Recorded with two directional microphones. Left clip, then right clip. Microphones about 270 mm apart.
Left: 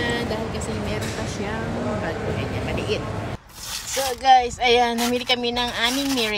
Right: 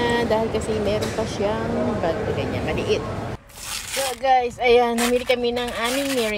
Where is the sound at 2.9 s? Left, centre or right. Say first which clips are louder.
Right 4 dB; centre.